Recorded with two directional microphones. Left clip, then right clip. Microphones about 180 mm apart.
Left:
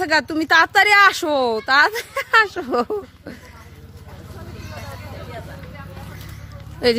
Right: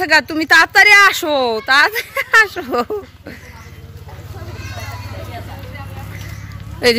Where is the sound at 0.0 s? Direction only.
20° left (ahead or behind).